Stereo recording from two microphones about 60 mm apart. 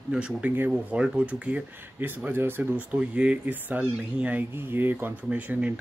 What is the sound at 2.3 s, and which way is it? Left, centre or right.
Speech, right.